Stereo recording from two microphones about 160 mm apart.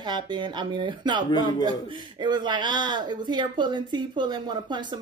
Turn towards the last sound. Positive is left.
turn(degrees=-30)  # may be behind; listen again after turning